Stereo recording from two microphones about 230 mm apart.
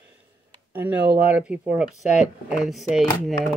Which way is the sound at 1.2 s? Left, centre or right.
Centre.